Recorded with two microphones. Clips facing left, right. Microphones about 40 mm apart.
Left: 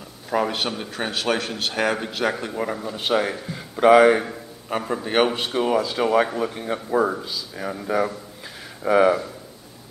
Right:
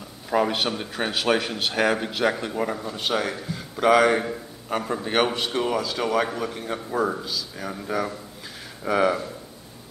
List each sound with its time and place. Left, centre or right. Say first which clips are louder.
0.3 s a man's voice: right 1 dB; centre